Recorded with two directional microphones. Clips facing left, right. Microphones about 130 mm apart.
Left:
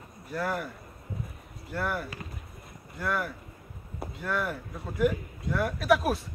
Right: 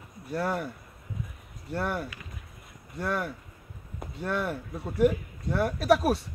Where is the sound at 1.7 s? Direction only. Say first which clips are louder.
Right 1 dB; 30° right (ahead or behind).